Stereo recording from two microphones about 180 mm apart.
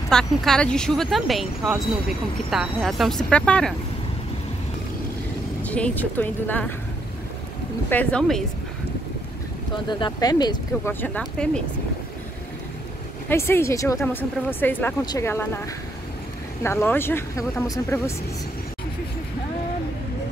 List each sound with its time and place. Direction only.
0.1 s speech: 5° left (ahead or behind)
5.6 s speech: 5° left (ahead or behind)
7.9 s speech: 5° left (ahead or behind)
9.8 s speech: 25° left (ahead or behind)
10.9 s speech: 10° left (ahead or behind)
13.3 s speech: 15° left (ahead or behind)
16.6 s speech: 15° left (ahead or behind)